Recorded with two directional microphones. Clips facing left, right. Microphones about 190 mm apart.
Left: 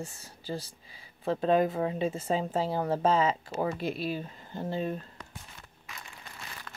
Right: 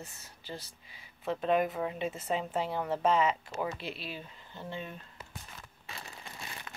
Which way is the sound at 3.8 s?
45° left (ahead or behind).